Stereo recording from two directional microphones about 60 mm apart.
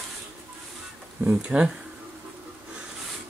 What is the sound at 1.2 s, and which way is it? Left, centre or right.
Speech, centre.